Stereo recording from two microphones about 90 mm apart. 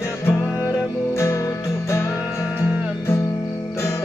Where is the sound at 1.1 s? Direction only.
30° left (ahead or behind).